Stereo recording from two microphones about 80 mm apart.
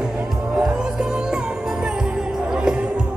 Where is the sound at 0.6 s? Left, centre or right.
Centre.